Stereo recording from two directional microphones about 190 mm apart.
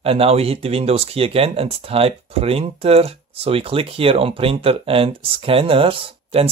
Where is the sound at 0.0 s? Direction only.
30° right (ahead or behind).